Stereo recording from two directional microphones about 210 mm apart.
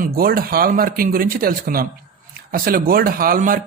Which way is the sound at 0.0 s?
45° right (ahead or behind).